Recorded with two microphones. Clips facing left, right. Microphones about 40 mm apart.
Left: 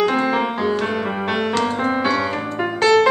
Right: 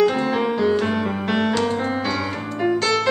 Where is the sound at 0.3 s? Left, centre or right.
Centre.